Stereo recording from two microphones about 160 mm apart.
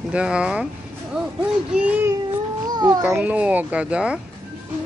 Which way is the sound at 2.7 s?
25° right (ahead or behind).